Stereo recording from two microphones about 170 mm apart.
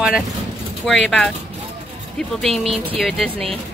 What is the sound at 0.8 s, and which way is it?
Speech, 5° left (ahead or behind).